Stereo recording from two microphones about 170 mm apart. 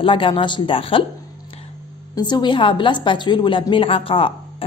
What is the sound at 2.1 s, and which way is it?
A woman's voice, 25° left (ahead or behind).